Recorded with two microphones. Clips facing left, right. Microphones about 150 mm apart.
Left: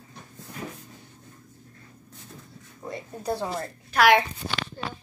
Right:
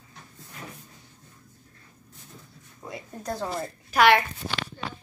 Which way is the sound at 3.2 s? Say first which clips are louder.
Left 3 dB; 10° left (ahead or behind).